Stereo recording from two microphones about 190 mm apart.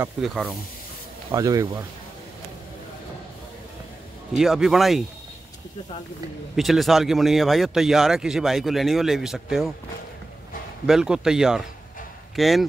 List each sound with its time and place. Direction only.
0.2 s speech: centre (ahead or behind)
1.3 s speech: 20° right (ahead or behind)
4.4 s speech: centre (ahead or behind)
6.5 s speech: centre (ahead or behind)
10.9 s speech: 5° right (ahead or behind)